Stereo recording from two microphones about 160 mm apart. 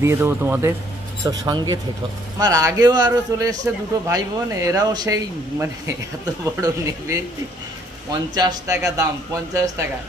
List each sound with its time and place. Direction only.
0.0 s speech: 15° right (ahead or behind)